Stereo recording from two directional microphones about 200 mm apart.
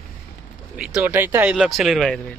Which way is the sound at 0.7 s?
5° right (ahead or behind).